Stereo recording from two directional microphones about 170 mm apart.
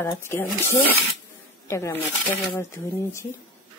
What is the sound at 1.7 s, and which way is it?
Speech, 15° left (ahead or behind).